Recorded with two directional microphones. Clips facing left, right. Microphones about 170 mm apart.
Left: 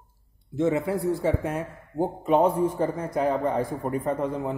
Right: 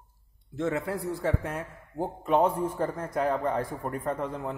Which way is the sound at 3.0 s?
15° left (ahead or behind).